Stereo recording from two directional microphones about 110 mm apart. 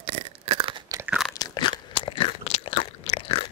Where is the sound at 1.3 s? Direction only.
40° left (ahead or behind).